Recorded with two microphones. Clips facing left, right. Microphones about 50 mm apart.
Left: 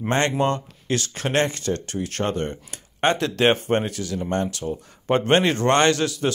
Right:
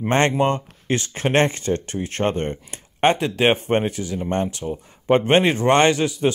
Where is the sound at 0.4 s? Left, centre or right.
Right.